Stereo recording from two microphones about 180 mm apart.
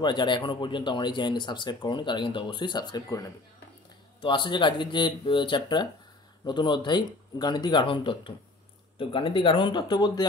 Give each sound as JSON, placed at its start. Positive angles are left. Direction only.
{"t": 0.0, "sound": "speech", "side_deg": 25}